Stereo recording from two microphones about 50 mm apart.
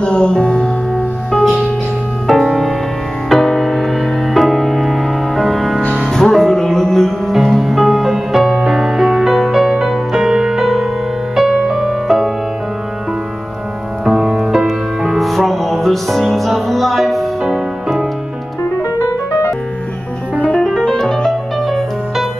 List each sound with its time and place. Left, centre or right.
0.0 s music: centre
1.3 s music: centre
14.0 s music: centre
18.8 s music: left
20.7 s music: centre